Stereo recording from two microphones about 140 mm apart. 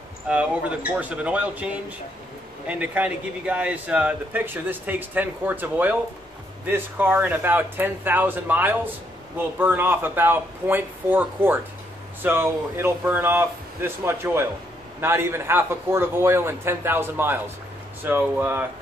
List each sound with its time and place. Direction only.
0.3 s speech: 10° right (ahead or behind)